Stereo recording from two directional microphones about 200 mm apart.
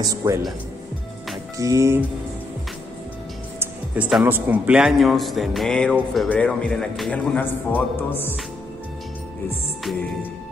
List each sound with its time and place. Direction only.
0.0 s music: 15° right (ahead or behind)
1.6 s music: 15° right (ahead or behind)
3.5 s a man's voice: 5° right (ahead or behind); by 8.4 s 10° left (ahead or behind)